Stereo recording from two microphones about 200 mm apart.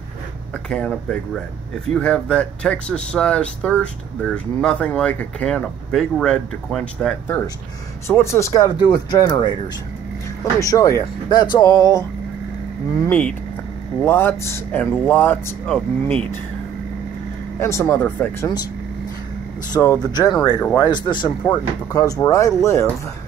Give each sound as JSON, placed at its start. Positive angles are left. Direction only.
{"t": 0.7, "sound": "speech", "side_deg": 5}
{"t": 17.6, "sound": "speech", "side_deg": 15}
{"t": 20.0, "sound": "speech", "side_deg": 20}